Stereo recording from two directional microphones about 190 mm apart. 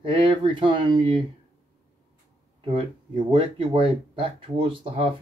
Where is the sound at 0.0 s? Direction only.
25° right (ahead or behind).